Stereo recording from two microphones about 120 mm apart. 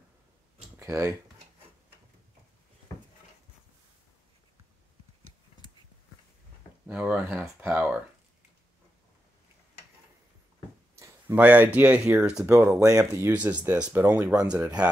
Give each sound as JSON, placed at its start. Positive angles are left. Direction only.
{"t": 0.7, "sound": "a sound", "side_deg": -25}
{"t": 6.9, "sound": "speech", "side_deg": -15}
{"t": 11.3, "sound": "speech", "side_deg": -15}
{"t": 12.4, "sound": "speech", "side_deg": -20}